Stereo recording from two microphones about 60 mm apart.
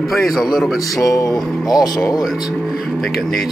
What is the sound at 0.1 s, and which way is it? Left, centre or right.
Speech, centre.